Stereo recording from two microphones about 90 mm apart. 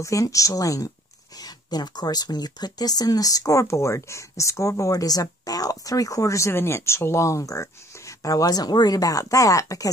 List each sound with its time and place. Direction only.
0.0 s speech: 35° left (ahead or behind)
1.4 s speech: 50° left (ahead or behind)